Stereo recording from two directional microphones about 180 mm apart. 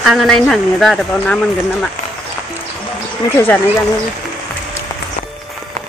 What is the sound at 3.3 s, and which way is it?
Speech, 10° left (ahead or behind).